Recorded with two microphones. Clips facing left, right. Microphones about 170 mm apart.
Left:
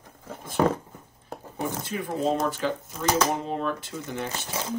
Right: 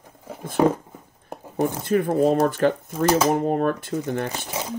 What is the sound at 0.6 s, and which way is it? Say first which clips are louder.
Speech: right 4 dB; 10° right (ahead or behind).